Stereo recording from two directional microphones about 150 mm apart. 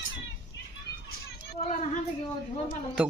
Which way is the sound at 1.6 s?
55° left (ahead or behind).